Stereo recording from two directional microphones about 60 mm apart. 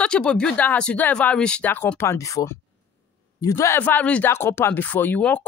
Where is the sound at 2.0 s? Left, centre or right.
Left.